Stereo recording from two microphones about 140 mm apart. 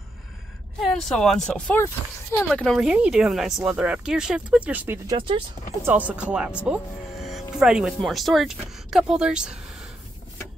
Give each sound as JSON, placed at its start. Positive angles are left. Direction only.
{"t": 0.7, "sound": "speech", "side_deg": 0}
{"t": 5.1, "sound": "speech", "side_deg": -40}
{"t": 5.8, "sound": "speech", "side_deg": -15}